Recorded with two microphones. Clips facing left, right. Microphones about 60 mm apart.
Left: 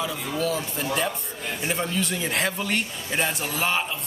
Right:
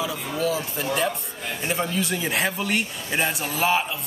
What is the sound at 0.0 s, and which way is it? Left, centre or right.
Speech, centre.